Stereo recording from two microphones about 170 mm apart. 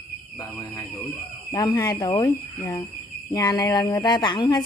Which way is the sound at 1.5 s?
25° left (ahead or behind).